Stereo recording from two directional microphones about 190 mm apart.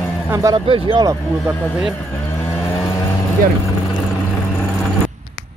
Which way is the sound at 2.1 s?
15° left (ahead or behind).